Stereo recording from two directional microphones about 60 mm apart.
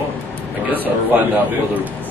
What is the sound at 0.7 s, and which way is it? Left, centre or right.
Speech, right.